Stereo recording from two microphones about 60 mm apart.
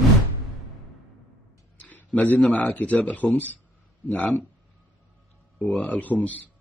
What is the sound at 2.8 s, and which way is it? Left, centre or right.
Speech, left.